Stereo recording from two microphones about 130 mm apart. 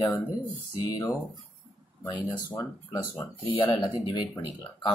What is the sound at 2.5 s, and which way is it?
Speech, 15° left (ahead or behind).